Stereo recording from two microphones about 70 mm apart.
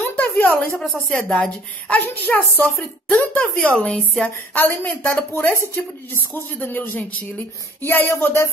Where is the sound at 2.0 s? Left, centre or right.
Left.